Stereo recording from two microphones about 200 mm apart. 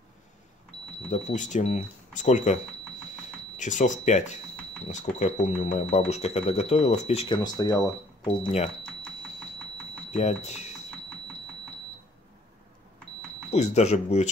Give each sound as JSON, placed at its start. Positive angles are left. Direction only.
{"t": 1.1, "sound": "speech", "side_deg": 35}
{"t": 7.4, "sound": "speech", "side_deg": 20}
{"t": 8.4, "sound": "speech", "side_deg": 30}
{"t": 10.1, "sound": "speech", "side_deg": 35}
{"t": 13.5, "sound": "speech", "side_deg": 35}